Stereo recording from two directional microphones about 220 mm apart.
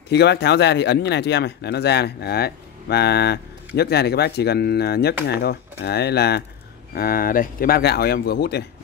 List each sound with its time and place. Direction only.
0.1 s speech: 50° left (ahead or behind)